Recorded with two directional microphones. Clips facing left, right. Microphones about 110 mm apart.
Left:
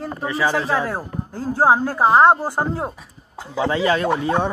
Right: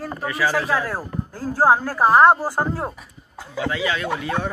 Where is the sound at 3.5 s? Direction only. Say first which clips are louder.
Left 5 dB; 30° left (ahead or behind).